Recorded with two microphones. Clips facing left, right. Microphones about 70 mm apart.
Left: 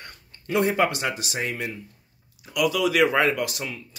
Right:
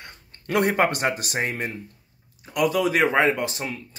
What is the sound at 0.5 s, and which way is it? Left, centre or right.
Speech, right.